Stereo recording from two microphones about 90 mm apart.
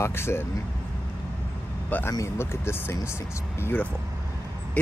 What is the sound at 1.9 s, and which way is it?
Speech, 20° left (ahead or behind).